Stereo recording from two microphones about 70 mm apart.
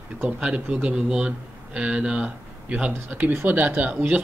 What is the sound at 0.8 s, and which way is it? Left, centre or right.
Speech, centre.